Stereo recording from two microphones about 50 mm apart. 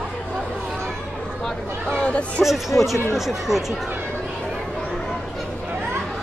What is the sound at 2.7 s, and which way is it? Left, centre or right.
Speech, left.